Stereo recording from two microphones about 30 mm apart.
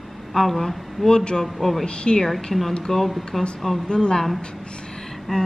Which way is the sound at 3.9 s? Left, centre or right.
Left.